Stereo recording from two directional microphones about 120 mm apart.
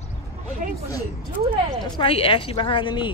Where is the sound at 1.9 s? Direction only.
50° left (ahead or behind).